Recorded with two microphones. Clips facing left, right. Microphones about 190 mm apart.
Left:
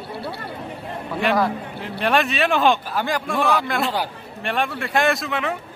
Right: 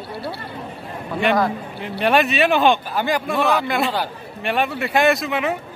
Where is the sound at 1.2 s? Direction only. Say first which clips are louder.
Right 2 dB; centre (ahead or behind).